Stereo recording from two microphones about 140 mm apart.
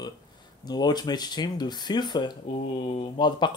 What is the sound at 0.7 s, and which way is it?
Speech, 30° left (ahead or behind).